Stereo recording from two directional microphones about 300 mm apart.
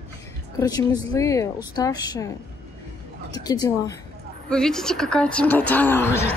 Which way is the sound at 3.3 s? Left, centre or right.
Centre.